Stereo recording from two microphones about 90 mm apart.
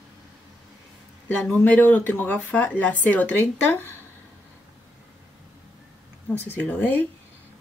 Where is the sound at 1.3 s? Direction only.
20° left (ahead or behind).